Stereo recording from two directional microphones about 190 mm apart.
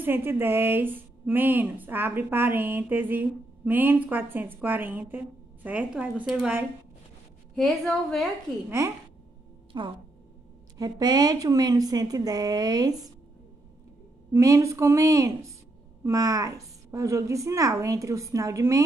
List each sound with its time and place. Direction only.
0.0 s a woman's voice: 10° right (ahead or behind)
8.6 s a woman's voice: 15° right (ahead or behind)
9.7 s a woman's voice: 25° right (ahead or behind)
14.3 s a woman's voice: 15° right (ahead or behind)